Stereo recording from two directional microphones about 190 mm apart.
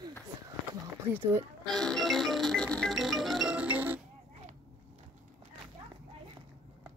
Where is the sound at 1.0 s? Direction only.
10° right (ahead or behind).